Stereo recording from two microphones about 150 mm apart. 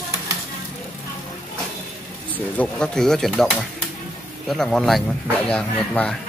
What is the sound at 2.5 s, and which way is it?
Speech, 5° left (ahead or behind).